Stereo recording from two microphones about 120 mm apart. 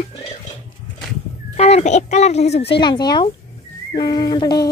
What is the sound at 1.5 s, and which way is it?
A woman's voice, 65° left (ahead or behind).